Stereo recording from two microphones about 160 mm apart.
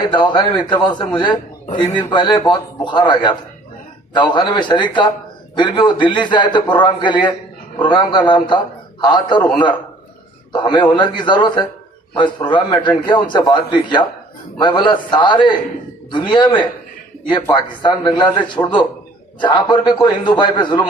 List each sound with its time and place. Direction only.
0.2 s a man's voice: 25° left (ahead or behind)